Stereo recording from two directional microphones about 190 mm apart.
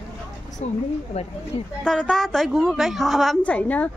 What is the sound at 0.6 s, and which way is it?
Speech, 35° left (ahead or behind).